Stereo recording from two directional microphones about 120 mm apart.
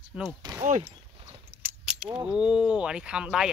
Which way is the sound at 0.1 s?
10° right (ahead or behind).